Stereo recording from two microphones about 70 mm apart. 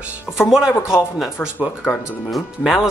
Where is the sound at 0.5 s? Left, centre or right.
Centre.